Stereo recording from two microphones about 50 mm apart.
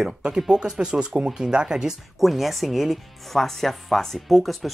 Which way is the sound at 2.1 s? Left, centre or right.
Centre.